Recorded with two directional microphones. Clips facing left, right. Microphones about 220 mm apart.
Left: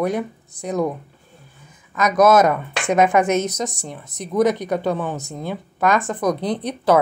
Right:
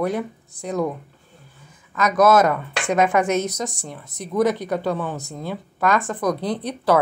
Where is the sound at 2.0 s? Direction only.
20° left (ahead or behind).